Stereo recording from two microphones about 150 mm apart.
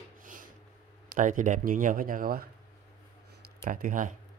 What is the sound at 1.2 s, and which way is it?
Speech, 60° right (ahead or behind).